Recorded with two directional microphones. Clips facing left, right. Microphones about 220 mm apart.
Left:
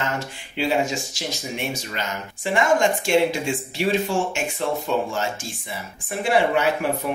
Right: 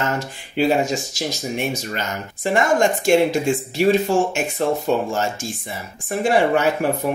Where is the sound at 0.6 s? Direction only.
40° right (ahead or behind).